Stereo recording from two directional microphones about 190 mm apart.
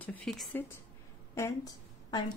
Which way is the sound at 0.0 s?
5° left (ahead or behind).